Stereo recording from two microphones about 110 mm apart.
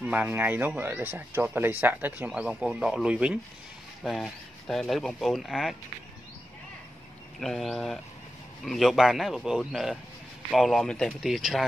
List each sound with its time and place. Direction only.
0.0 s speech: 15° right (ahead or behind)
4.0 s speech: centre (ahead or behind)
7.3 s speech: centre (ahead or behind)